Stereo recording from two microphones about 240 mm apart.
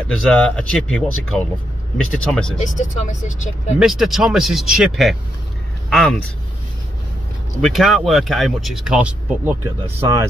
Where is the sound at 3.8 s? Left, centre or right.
Centre.